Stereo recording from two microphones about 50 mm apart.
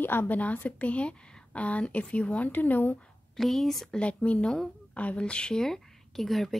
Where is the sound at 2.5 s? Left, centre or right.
Left.